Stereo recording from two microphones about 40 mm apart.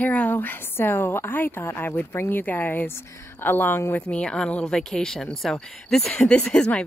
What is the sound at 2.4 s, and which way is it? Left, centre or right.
A woman's voice, left.